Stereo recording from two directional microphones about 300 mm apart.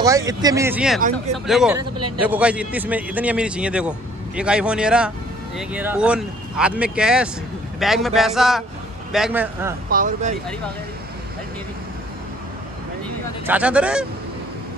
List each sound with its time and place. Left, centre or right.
0.0 s a man's voice: centre
1.8 s speech: right
2.2 s a man's voice: centre
9.8 s speech: right
13.5 s a man's voice: centre